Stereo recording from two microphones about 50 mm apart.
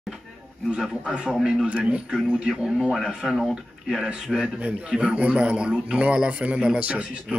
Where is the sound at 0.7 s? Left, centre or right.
Right.